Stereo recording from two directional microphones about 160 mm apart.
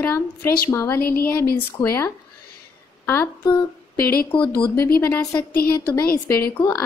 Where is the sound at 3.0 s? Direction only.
15° left (ahead or behind).